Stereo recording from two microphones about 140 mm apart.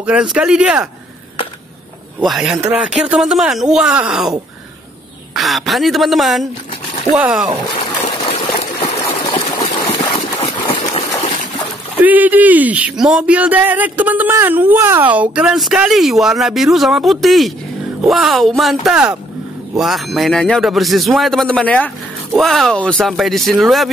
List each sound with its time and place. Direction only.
0.0 s speech: 5° right (ahead or behind)
2.2 s speech: 5° right (ahead or behind)
5.3 s speech: centre (ahead or behind)
9.0 s water: 30° left (ahead or behind)
10.3 s a sound: 35° left (ahead or behind)
12.0 s speech: 10° right (ahead or behind)